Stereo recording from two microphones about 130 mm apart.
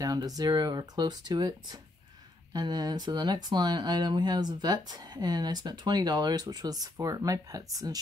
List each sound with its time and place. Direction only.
0.0 s speech: 30° right (ahead or behind)